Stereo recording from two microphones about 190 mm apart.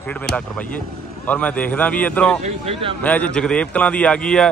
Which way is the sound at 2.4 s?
35° right (ahead or behind).